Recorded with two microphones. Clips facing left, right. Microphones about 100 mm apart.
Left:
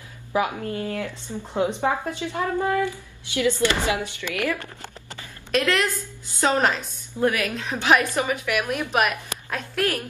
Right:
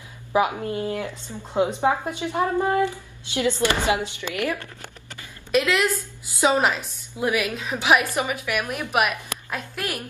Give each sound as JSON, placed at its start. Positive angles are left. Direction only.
{"t": 0.3, "sound": "speech", "side_deg": -20}
{"t": 5.5, "sound": "a woman's voice", "side_deg": -5}